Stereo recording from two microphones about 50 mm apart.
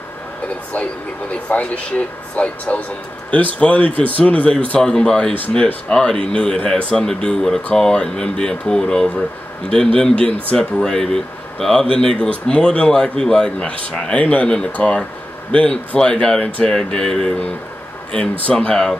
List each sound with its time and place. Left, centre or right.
1.3 s speech: left
14.2 s speech: left; by 18.9 s centre